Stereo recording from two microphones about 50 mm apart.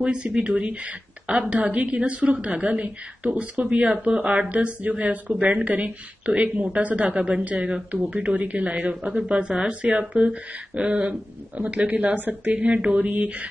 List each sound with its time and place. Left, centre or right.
0.0 s speech: right
12.6 s speech: right